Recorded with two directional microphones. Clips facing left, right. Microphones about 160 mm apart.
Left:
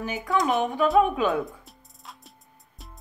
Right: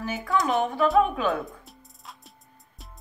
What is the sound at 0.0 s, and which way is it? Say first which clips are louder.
A woman's voice: left 1 dB; 15° left (ahead or behind).